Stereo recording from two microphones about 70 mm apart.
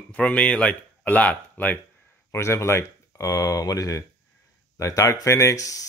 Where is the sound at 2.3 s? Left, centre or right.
Left.